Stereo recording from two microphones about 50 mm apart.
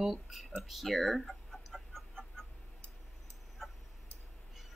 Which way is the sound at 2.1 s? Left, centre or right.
Centre.